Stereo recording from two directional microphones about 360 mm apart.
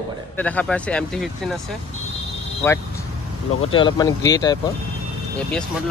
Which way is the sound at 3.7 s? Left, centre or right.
Centre.